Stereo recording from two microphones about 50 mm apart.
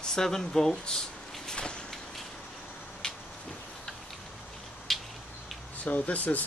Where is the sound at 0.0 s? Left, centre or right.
Centre.